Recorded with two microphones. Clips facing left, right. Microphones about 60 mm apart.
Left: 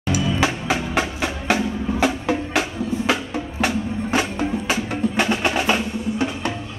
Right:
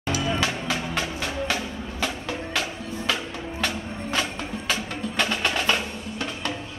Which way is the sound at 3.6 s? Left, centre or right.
Centre.